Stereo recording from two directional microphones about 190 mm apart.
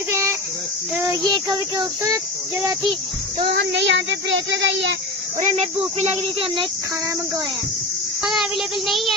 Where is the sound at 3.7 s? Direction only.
70° right (ahead or behind).